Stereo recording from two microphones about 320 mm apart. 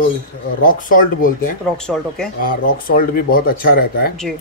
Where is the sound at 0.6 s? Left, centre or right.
Left.